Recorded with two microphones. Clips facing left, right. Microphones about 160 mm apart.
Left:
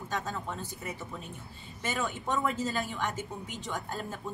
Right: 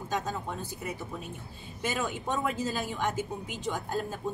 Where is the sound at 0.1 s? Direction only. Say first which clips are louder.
Right 2 dB; 15° right (ahead or behind).